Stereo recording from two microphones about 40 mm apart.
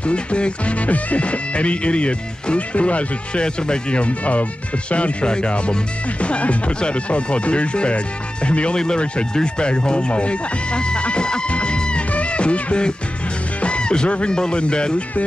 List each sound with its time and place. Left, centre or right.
0.0 s speech: left
12.1 s music: left
14.3 s speech: left